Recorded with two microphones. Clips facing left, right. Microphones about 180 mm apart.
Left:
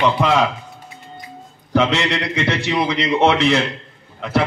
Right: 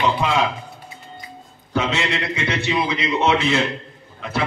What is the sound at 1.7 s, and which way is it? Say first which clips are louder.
A man's voice: left 4 dB; 60° left (ahead or behind).